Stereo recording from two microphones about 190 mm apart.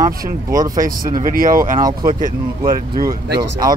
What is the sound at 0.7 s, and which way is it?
Speech, 45° right (ahead or behind).